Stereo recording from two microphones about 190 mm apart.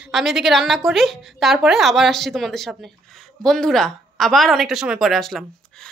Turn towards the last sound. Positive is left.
turn(degrees=5)  # may be behind; listen again after turning